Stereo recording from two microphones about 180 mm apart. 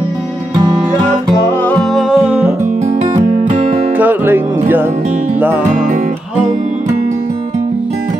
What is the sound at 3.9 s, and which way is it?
Music, 10° right (ahead or behind).